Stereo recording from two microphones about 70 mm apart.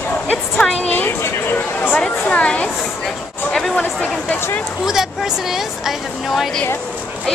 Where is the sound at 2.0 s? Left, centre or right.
Centre.